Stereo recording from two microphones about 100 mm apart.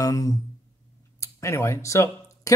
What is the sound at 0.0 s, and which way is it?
A man's voice, 35° left (ahead or behind).